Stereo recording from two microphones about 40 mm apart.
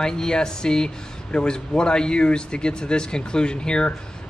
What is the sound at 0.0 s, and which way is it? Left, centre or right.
Speech, centre.